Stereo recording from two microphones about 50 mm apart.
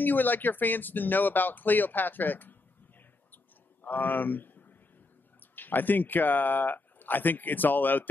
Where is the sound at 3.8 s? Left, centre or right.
Left.